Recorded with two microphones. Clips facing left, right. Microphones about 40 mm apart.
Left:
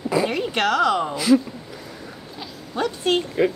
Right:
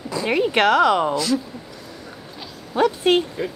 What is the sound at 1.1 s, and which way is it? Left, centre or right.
Speech, centre.